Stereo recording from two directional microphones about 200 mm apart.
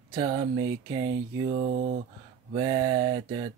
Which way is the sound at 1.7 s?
45° right (ahead or behind).